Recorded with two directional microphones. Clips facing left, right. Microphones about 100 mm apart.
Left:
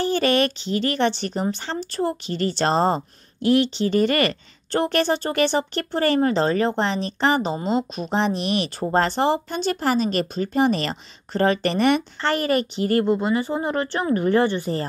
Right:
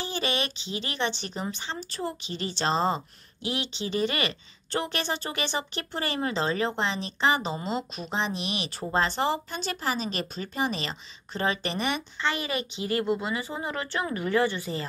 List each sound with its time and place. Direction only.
0.0 s a woman's voice: 55° left (ahead or behind)
5.0 s a woman's voice: 35° left (ahead or behind)
7.5 s a woman's voice: 35° left (ahead or behind)
14.6 s speech: 45° left (ahead or behind)